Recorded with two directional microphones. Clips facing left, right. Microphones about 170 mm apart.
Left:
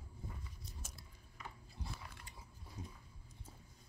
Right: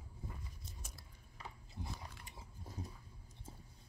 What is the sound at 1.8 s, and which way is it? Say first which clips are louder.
Biting: right 2 dB; 20° right (ahead or behind).